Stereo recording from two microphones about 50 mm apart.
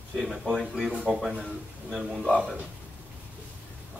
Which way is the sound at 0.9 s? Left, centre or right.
Centre.